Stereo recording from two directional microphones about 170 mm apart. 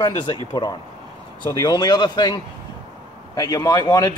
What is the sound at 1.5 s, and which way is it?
Speech, 25° left (ahead or behind).